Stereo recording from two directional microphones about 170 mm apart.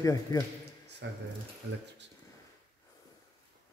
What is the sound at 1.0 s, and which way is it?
Speech, 90° right.